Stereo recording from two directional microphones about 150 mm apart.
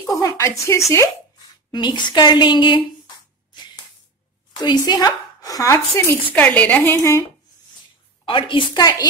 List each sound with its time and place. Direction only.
0.0 s a woman's voice: 20° left (ahead or behind)
1.7 s a woman's voice: 30° left (ahead or behind)
4.6 s a woman's voice: 30° left (ahead or behind)
6.3 s a woman's voice: 10° left (ahead or behind)
8.3 s a woman's voice: 35° left (ahead or behind)